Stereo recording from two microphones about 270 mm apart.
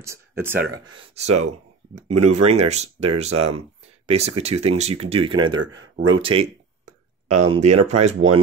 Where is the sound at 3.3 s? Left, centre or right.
Right.